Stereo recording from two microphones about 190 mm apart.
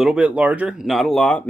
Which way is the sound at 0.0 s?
5° right (ahead or behind).